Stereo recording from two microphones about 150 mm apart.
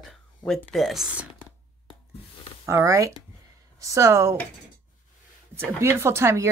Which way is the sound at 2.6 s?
20° right (ahead or behind).